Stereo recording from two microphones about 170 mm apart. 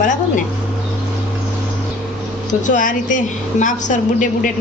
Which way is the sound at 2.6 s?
50° left (ahead or behind).